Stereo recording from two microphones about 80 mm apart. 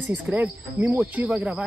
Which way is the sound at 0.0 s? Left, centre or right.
Centre.